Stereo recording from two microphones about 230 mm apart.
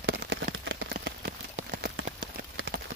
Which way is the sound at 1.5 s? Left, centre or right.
Right.